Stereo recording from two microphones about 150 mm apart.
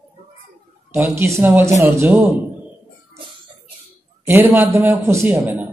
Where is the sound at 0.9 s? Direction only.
15° right (ahead or behind).